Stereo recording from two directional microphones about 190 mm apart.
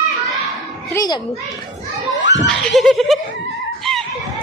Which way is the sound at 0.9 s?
20° left (ahead or behind).